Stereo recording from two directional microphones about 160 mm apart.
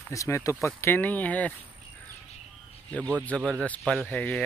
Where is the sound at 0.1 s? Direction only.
20° left (ahead or behind).